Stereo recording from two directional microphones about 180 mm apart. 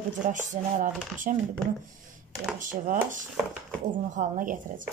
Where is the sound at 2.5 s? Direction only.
45° right (ahead or behind).